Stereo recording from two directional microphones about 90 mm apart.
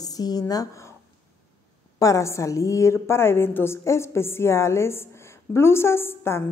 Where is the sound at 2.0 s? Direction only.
35° left (ahead or behind).